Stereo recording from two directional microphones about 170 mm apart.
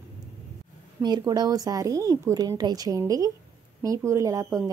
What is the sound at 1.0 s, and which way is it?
Speech, 25° right (ahead or behind).